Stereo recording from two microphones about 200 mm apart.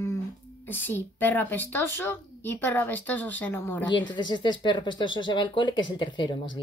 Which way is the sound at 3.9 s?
20° left (ahead or behind).